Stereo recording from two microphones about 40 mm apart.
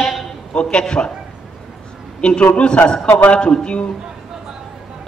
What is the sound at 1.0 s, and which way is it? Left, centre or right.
Speech, left.